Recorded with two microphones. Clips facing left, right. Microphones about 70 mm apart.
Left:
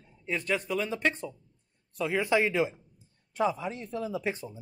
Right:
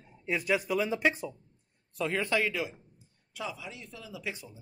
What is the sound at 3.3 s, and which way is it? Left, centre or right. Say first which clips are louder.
Speech: left 10 dB; left.